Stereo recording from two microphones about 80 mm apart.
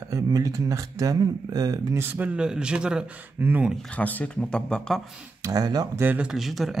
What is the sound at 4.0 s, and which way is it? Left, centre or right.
Speech, centre.